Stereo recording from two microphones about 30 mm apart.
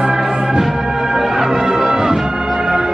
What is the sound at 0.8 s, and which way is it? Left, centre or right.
Music, centre.